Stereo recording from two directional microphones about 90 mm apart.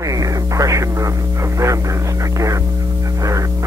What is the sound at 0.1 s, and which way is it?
Radio, 40° right (ahead or behind).